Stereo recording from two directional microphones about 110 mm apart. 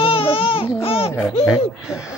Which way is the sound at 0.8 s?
60° left (ahead or behind).